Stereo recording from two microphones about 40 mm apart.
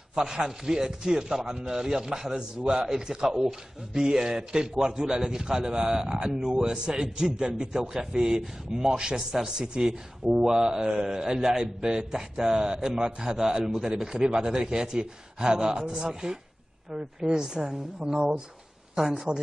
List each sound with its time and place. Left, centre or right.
0.4 s a man's voice: centre